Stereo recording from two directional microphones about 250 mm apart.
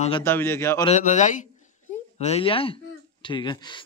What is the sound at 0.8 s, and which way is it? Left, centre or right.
Speech, left.